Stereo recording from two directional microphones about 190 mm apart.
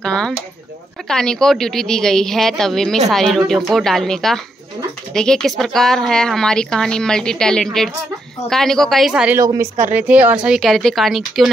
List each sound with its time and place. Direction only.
0.0 s a woman's voice: 5° left (ahead or behind)
9.4 s a woman's voice: 15° right (ahead or behind); by 11.5 s centre (ahead or behind)